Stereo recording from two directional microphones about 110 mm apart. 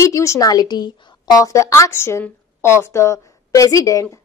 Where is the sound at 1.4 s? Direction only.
30° left (ahead or behind).